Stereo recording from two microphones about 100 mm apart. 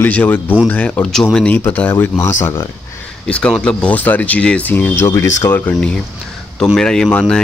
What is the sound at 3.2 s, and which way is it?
Speech, 10° left (ahead or behind).